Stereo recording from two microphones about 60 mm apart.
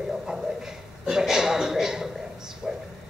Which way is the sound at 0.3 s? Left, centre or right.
Centre.